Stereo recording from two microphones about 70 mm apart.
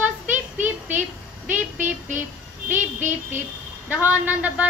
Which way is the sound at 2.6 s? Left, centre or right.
Right.